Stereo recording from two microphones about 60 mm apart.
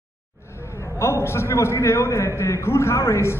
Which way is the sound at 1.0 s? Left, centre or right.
Left.